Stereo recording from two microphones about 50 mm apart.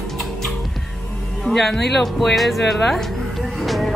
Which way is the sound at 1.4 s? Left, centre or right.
Centre.